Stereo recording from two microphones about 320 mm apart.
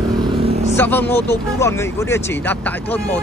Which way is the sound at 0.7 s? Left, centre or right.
Centre.